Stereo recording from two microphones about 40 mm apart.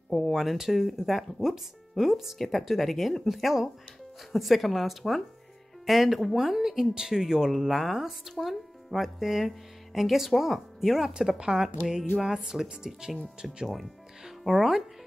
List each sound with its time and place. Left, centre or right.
0.3 s speech: centre
7.5 s speech: centre
11.1 s speech: centre
13.7 s speech: centre